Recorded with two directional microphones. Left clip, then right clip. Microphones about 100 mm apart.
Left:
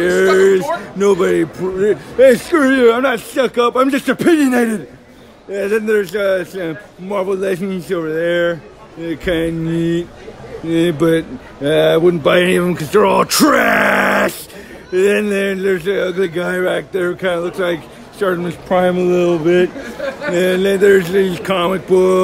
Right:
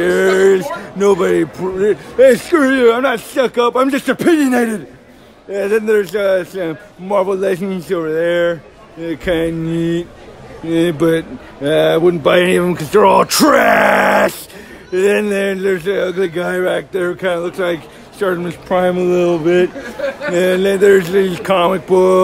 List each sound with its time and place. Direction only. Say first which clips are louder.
0.0 s a sound: even; 45° right (ahead or behind)
1.8 s speech: right 1 dB; 20° right (ahead or behind)
3.0 s speech: right 1 dB; 30° right (ahead or behind)
4.0 s speech: even; 20° right (ahead or behind)
5.5 s speech: right 2 dB; 40° right (ahead or behind)
7.1 s a sound: right 3 dB; 65° right (ahead or behind); by 8.5 s 40° right (ahead or behind)
9.0 s speech: right 1 dB; 35° right (ahead or behind); by 12.3 s 20° right (ahead or behind)
12.3 s speech: right 1 dB; 40° right (ahead or behind); by 18.6 s 10° right (ahead or behind)
18.9 s speech: even; 20° right (ahead or behind)
20.0 s speech: right 2 dB; 5° right (ahead or behind)
20.3 s a sound: right 1 dB; 35° right (ahead or behind); by 22.2 s 55° right (ahead or behind)